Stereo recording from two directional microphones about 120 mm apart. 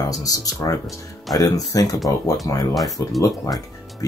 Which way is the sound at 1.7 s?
30° left (ahead or behind).